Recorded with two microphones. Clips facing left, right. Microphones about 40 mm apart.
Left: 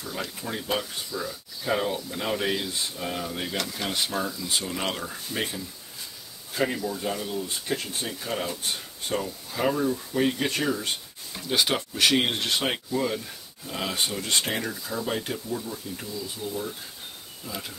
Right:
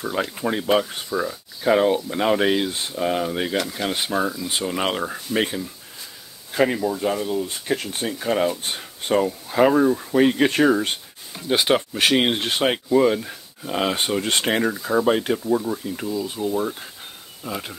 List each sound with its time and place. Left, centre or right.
0.0 s speech: right
6.8 s speech: right
10.2 s speech: right
11.4 s speech: right
12.9 s speech: right
15.4 s speech: right
16.1 s speech: right